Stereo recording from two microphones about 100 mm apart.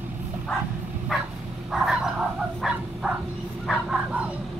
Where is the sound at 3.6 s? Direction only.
10° right (ahead or behind).